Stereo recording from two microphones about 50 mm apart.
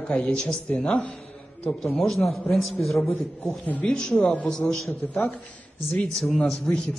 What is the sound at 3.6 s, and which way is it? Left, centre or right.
Speech, left.